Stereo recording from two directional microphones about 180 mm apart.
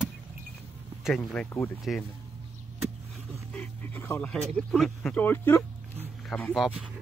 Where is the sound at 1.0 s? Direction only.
5° left (ahead or behind).